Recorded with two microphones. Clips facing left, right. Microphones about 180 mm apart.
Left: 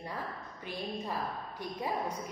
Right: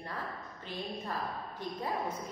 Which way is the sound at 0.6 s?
15° left (ahead or behind).